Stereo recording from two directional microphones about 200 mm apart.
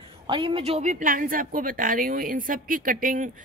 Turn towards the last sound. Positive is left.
turn(degrees=-40)  # may be behind; listen again after turning